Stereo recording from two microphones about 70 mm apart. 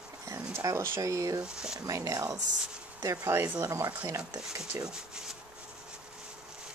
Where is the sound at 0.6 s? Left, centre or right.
Right.